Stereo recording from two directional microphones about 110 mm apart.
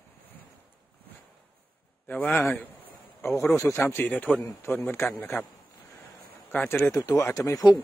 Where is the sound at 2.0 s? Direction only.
15° left (ahead or behind).